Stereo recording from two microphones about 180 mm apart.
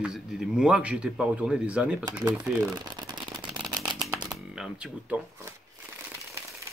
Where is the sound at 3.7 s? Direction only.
25° right (ahead or behind).